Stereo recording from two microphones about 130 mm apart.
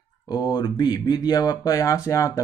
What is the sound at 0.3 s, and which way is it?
Speech, 30° left (ahead or behind).